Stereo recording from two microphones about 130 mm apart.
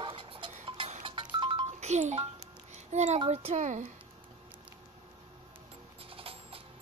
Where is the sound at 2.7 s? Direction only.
65° right (ahead or behind).